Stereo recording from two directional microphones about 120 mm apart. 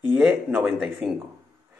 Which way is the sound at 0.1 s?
5° right (ahead or behind).